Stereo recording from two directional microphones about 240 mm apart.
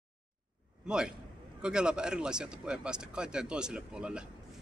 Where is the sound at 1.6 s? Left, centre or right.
Centre.